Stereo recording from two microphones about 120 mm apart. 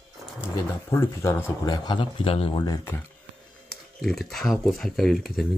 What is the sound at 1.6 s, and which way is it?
Speech, 35° left (ahead or behind).